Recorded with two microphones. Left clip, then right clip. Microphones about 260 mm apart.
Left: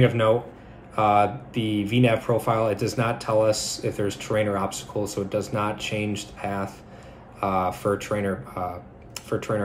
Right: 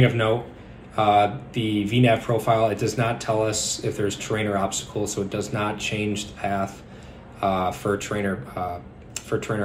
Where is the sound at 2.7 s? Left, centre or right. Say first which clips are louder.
Right 1 dB; right.